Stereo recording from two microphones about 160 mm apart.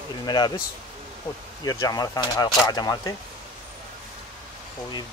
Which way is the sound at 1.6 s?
25° left (ahead or behind).